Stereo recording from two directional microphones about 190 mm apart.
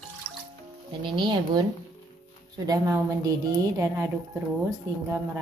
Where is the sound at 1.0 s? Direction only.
25° right (ahead or behind).